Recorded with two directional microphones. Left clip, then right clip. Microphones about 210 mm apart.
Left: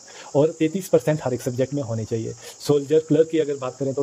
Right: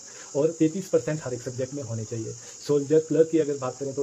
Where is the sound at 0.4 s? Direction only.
40° left (ahead or behind).